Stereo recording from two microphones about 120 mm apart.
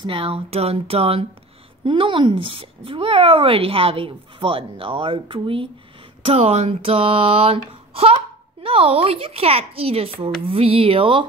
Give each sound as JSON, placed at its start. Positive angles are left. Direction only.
{"t": 0.0, "sound": "speech", "side_deg": -50}
{"t": 1.9, "sound": "speech", "side_deg": -45}
{"t": 6.2, "sound": "speech", "side_deg": -60}